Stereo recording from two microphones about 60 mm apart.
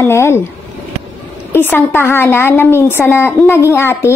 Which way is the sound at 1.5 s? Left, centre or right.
Left.